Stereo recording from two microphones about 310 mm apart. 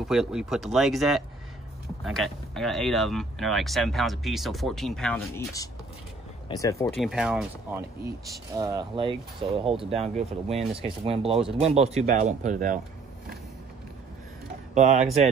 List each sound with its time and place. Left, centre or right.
0.0 s speech: centre
7.0 s speech: centre; by 12.8 s right
14.7 s speech: right